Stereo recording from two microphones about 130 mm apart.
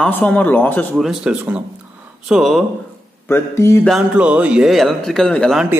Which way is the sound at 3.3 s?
20° left (ahead or behind).